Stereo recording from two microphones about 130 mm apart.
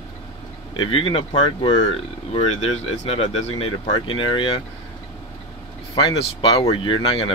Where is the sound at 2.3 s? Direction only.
55° left (ahead or behind).